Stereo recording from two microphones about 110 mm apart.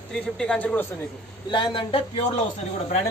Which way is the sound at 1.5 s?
50° left (ahead or behind).